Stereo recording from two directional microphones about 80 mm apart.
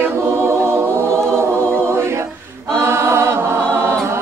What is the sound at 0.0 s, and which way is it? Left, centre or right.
Choir, right.